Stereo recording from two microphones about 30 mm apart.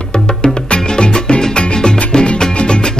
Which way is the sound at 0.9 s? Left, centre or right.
Left.